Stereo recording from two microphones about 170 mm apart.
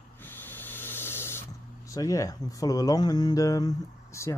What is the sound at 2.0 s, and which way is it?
Speech, 20° left (ahead or behind).